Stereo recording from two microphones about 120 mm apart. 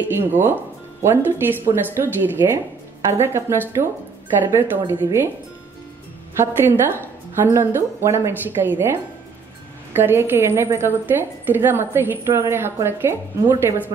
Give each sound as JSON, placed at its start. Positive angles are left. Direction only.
{"t": 0.0, "sound": "a woman's voice", "side_deg": -15}
{"t": 6.3, "sound": "a woman's voice", "side_deg": -20}
{"t": 9.9, "sound": "a woman's voice", "side_deg": -15}